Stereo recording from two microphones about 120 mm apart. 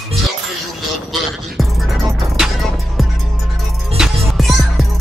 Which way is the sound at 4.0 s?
Centre (ahead or behind).